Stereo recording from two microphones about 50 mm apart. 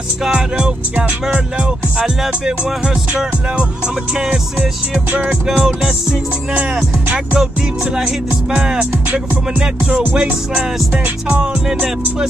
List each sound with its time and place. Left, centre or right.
0.2 s music: centre
2.0 s music: centre; by 5.6 s right
5.6 s music: centre
6.5 s music: right
7.3 s music: centre
9.6 s music: right